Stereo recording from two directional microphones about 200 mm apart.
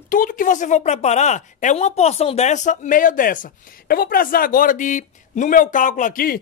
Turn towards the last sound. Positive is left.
turn(degrees=45)  # may be behind; listen again after turning